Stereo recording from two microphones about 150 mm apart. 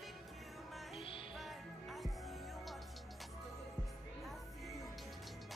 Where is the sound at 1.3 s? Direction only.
Centre (ahead or behind).